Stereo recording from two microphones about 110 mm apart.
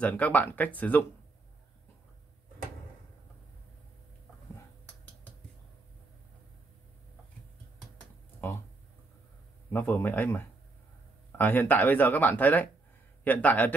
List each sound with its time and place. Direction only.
0.0 s speech: 15° left (ahead or behind)
8.4 s speech: 20° left (ahead or behind)
9.7 s speech: 20° left (ahead or behind)